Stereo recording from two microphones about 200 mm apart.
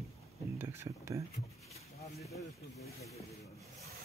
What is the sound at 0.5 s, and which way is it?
Speech, 15° right (ahead or behind).